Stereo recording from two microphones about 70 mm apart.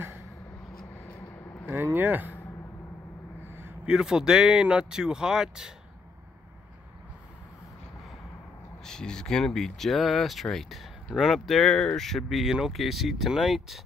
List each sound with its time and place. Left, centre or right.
1.7 s speech: right
3.8 s speech: centre
8.8 s speech: centre